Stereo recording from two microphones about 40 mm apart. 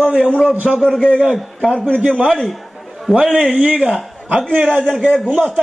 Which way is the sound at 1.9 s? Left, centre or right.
Right.